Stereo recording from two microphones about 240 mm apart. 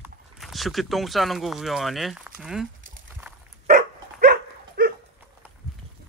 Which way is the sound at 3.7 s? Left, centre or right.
Right.